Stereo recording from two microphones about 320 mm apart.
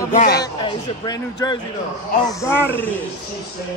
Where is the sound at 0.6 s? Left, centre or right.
Centre.